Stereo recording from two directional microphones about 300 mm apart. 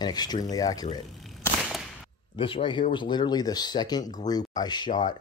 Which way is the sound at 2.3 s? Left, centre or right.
Centre.